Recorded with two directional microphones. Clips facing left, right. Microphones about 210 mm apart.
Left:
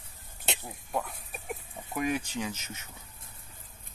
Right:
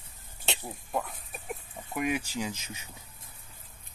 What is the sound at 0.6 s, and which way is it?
Speech, centre (ahead or behind).